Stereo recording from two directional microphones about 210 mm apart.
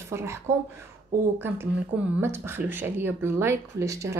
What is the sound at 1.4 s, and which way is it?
A woman's voice, 10° right (ahead or behind).